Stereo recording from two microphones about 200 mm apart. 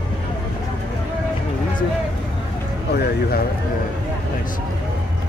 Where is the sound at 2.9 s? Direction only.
50° left (ahead or behind).